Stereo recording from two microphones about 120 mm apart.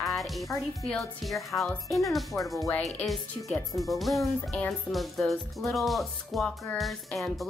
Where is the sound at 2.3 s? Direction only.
25° left (ahead or behind).